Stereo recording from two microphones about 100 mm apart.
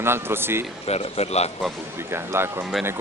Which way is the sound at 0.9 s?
90° left.